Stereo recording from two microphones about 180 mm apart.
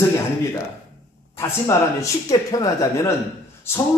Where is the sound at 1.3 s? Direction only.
15° left (ahead or behind).